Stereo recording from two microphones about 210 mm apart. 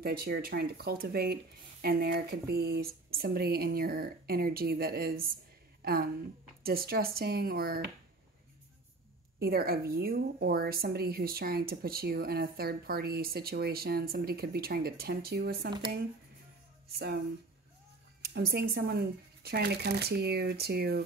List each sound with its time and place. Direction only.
0.0 s a woman's voice: 45° right (ahead or behind)
6.6 s a woman's voice: 45° right (ahead or behind)
9.4 s a woman's voice: 45° right (ahead or behind)
18.2 s a woman's voice: 50° right (ahead or behind)